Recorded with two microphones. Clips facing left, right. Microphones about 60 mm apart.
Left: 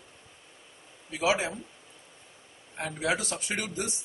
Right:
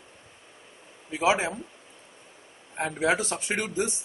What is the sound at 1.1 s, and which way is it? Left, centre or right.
Speech, right.